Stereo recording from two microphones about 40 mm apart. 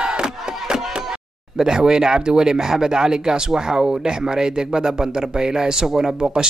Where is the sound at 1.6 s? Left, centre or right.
Centre.